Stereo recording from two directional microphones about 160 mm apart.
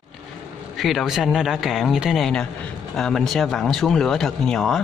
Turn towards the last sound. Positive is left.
turn(degrees=0)  # may be behind; listen again after turning